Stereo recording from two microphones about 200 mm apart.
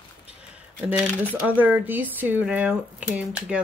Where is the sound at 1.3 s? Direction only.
10° right (ahead or behind).